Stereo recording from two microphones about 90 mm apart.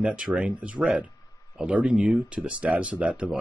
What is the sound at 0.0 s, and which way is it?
Speech, 10° right (ahead or behind).